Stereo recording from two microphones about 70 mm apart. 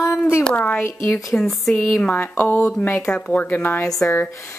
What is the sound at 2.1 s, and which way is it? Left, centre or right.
Speech, left.